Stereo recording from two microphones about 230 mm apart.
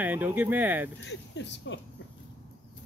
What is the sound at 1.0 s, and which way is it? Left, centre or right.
Speech, left.